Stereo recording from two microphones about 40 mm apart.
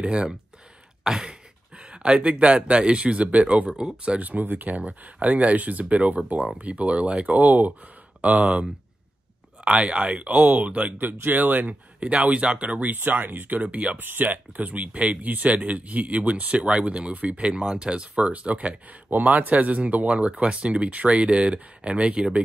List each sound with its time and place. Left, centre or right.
0.0 s speech: right
1.0 s a sound: centre
2.2 s speech: right
3.9 s speech: right
4.2 s speech: right
9.7 s speech: right
11.2 s speech: right
12.9 s speech: right
13.6 s speech: right
13.9 s speech: right
15.2 s speech: right
17.6 s speech: right
20.2 s speech: right